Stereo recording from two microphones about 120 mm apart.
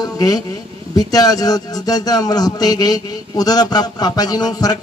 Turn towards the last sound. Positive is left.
turn(degrees=35)  # may be behind; listen again after turning